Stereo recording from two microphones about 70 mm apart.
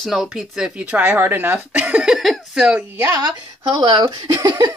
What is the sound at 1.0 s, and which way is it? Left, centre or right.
Speech, right.